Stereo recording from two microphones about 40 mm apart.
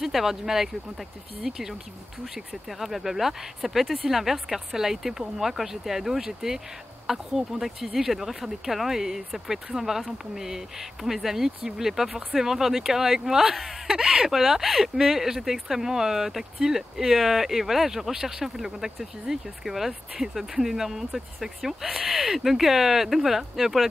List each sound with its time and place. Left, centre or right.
0.0 s speech: centre
18.1 s speech: centre